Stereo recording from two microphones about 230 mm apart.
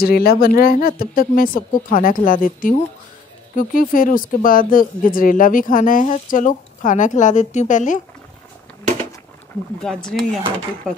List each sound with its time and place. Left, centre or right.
0.0 s speech: left
9.8 s speech: centre